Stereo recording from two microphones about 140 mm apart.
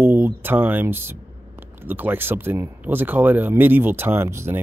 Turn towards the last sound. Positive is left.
turn(degrees=-20)  # may be behind; listen again after turning